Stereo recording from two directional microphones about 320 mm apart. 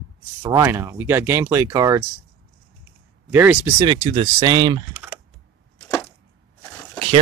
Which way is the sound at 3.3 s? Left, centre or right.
Centre.